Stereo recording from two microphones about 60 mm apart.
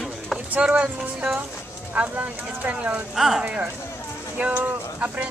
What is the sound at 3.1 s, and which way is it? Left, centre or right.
Speech, centre.